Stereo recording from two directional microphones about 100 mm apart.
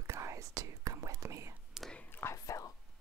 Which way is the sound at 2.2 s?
30° left (ahead or behind).